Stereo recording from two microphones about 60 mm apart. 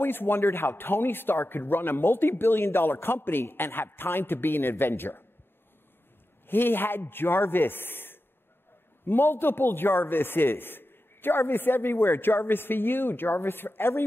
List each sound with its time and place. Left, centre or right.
0.0 s a man's voice: left
6.4 s a man's voice: left